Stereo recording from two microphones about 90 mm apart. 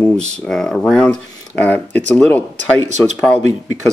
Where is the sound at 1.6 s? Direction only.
20° left (ahead or behind).